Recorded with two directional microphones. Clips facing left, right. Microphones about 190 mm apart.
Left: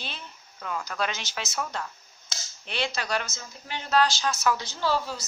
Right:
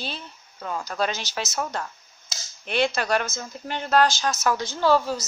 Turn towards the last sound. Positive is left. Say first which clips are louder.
# right 7 dB
turn(degrees=-50)  # may be behind; listen again after turning